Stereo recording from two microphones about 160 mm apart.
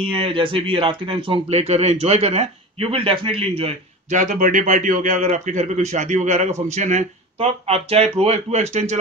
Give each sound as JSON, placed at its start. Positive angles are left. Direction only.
{"t": 0.1, "sound": "speech", "side_deg": -35}
{"t": 4.1, "sound": "a man's voice", "side_deg": -50}